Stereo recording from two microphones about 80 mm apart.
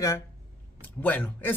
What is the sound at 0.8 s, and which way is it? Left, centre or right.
Speech, left.